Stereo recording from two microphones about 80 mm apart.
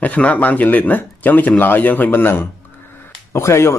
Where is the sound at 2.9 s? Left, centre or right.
Left.